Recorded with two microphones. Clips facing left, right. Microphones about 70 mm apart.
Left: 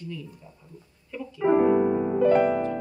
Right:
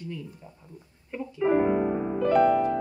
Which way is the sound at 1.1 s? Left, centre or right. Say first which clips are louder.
Right 1 dB; right.